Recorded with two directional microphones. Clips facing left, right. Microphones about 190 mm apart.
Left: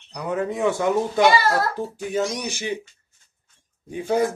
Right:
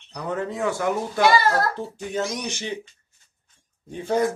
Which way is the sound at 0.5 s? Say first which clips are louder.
Left 4 dB; 20° left (ahead or behind).